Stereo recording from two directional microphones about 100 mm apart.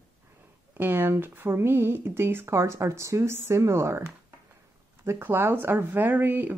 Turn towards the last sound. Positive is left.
turn(degrees=-20)  # may be behind; listen again after turning